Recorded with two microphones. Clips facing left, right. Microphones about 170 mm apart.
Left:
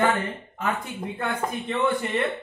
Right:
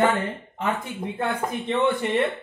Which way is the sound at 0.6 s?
20° right (ahead or behind).